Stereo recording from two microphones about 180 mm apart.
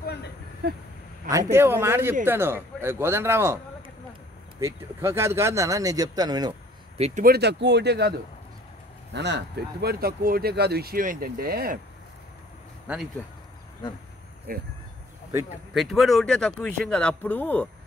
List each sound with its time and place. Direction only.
0.0 s a sound: 70° left (ahead or behind)
1.3 s speech: 15° right (ahead or behind)
4.6 s speech: 15° right (ahead or behind)
7.0 s speech: 45° right (ahead or behind)
7.3 s speech: 70° right (ahead or behind)
9.1 s speech: 75° right (ahead or behind); by 11.8 s 55° right (ahead or behind)
12.8 s speech: 5° right (ahead or behind)
14.5 s speech: 50° right (ahead or behind)
15.7 s speech: centre (ahead or behind)